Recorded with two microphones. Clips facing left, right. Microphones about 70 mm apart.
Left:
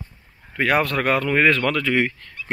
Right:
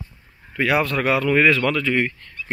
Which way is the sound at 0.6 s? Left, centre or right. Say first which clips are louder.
Even; left.